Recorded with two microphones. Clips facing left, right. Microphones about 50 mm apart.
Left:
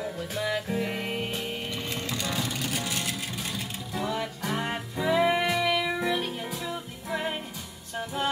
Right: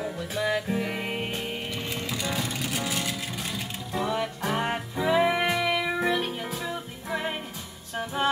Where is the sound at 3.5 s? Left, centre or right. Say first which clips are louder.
Right 1 dB; centre.